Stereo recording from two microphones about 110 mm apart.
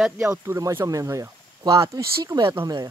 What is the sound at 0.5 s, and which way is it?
Speech, 25° right (ahead or behind).